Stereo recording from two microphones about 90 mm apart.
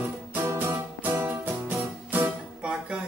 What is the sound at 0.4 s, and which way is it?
Music, 30° right (ahead or behind).